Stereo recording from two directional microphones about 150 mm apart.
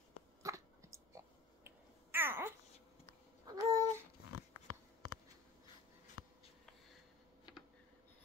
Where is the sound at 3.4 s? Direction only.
25° right (ahead or behind).